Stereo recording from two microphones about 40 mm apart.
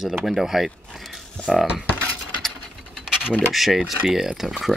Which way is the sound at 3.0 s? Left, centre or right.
Centre.